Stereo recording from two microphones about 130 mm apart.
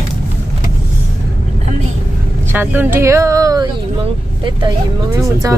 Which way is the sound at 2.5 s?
15° right (ahead or behind).